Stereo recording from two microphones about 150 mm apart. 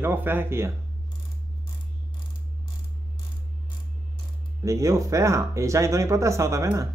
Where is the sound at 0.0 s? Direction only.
15° right (ahead or behind).